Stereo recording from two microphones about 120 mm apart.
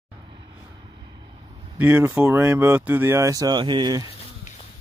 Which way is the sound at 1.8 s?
15° right (ahead or behind).